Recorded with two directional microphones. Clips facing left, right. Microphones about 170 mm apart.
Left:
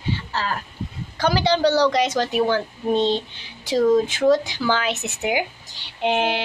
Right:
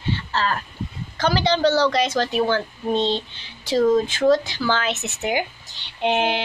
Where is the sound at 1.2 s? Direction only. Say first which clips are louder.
Even; 10° left (ahead or behind).